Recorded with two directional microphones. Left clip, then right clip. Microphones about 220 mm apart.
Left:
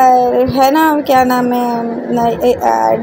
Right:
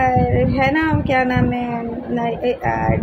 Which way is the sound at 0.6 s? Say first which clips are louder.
Left 9 dB; 15° left (ahead or behind).